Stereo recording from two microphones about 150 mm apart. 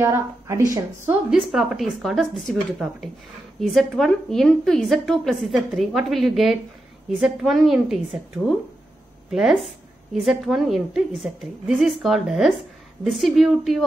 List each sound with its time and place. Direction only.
0.0 s a woman's voice: 20° right (ahead or behind)
1.3 s a woman's voice: 5° right (ahead or behind)
9.3 s a woman's voice: 5° right (ahead or behind)